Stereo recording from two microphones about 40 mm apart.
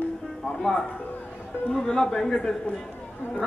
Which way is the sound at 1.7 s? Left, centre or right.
Centre.